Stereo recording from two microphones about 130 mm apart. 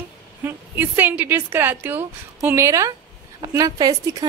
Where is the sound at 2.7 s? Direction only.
25° right (ahead or behind).